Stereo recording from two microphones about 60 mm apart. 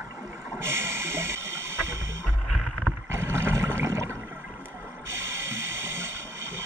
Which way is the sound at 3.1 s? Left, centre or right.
Right.